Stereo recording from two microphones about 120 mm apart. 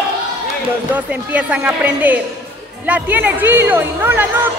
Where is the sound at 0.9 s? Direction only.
10° right (ahead or behind).